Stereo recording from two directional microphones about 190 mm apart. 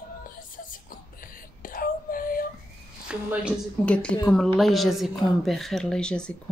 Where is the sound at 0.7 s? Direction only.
45° left (ahead or behind).